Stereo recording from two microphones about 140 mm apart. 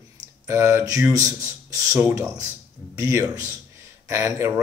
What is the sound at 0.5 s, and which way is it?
Speech, 20° right (ahead or behind).